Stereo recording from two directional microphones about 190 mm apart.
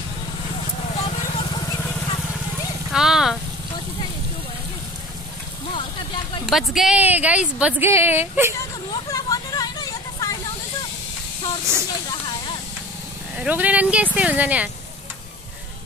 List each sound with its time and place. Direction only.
1.0 s vehicle: 25° left (ahead or behind)
2.9 s vehicle: centre (ahead or behind)
6.4 s a woman's voice: centre (ahead or behind)
9.1 s a sound: 20° left (ahead or behind)
11.7 s a woman's voice: 15° right (ahead or behind)
12.1 s a sound: 25° left (ahead or behind)
13.4 s a woman's voice: 5° right (ahead or behind)